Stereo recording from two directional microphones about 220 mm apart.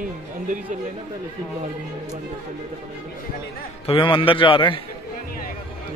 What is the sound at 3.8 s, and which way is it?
Speech, 25° left (ahead or behind).